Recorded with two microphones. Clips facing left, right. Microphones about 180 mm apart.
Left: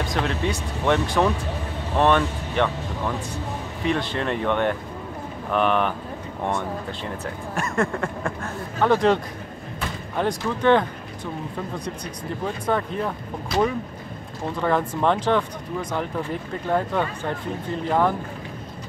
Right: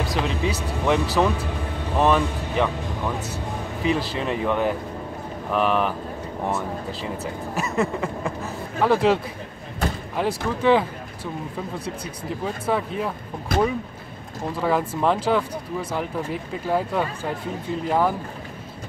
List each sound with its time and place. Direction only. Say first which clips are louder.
0.0 s speech: even; centre (ahead or behind)
4.1 s speech: even; 5° right (ahead or behind)
12.4 s speech: even; 5° right (ahead or behind)
13.5 s speech: even; 50° right (ahead or behind)
14.6 s speech: even; 5° right (ahead or behind)